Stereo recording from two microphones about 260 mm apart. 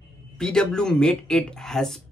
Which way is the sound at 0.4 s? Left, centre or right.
Centre.